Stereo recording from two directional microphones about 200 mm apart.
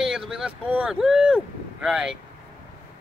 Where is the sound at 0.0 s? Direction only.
Centre (ahead or behind).